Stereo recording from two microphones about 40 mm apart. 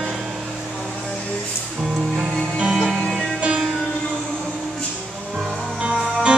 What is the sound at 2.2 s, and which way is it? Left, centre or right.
Music, right.